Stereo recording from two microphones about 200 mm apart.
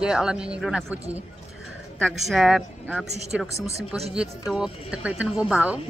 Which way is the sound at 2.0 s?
Centre (ahead or behind).